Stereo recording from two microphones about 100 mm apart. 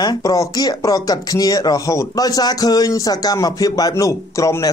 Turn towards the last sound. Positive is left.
turn(degrees=30)  # may be behind; listen again after turning